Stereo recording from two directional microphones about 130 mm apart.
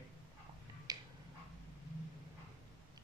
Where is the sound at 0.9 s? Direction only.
30° right (ahead or behind).